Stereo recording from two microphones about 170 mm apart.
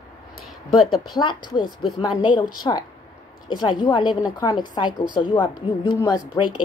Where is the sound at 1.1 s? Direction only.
25° left (ahead or behind).